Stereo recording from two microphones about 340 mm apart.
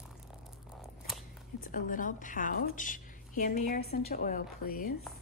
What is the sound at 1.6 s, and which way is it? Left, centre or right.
A woman's voice, left.